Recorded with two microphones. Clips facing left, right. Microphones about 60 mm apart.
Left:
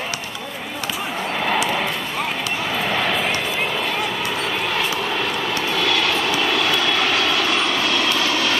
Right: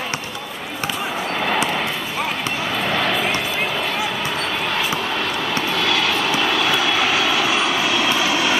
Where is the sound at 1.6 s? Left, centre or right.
Centre.